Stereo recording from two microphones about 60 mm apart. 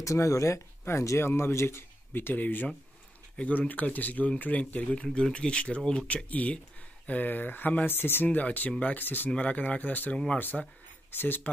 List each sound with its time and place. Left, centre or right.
0.0 s speech: left
8.3 s speech: left
10.1 s speech: centre
11.1 s speech: left